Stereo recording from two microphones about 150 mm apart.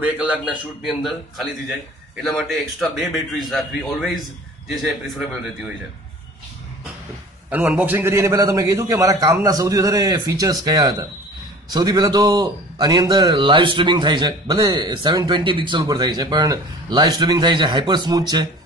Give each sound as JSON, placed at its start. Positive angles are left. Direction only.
{"t": 0.0, "sound": "a man's voice", "side_deg": -10}
{"t": 7.4, "sound": "a man's voice", "side_deg": -10}